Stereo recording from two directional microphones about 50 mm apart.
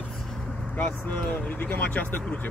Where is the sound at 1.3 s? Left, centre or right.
Left.